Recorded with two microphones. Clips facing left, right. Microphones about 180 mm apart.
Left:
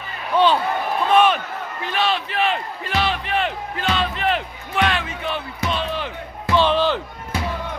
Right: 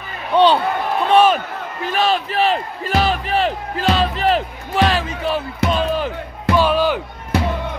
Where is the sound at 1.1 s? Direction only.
40° right (ahead or behind).